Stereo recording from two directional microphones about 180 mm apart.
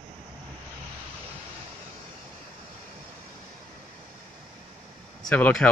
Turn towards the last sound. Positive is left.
turn(degrees=5)  # may be behind; listen again after turning